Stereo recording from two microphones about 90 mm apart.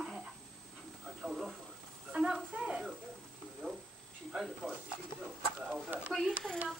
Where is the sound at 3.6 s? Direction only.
20° right (ahead or behind).